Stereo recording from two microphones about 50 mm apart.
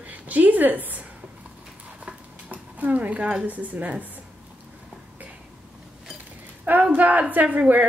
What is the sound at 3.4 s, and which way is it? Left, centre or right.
Speech, right.